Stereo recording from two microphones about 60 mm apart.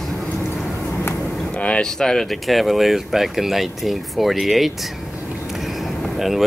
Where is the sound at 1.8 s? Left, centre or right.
Centre.